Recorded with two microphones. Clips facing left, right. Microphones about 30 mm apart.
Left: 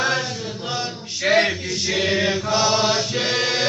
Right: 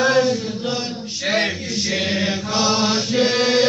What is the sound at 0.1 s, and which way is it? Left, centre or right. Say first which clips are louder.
Chant: right 7 dB; right.